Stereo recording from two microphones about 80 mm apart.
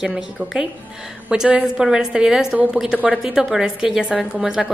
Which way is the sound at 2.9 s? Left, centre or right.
Centre.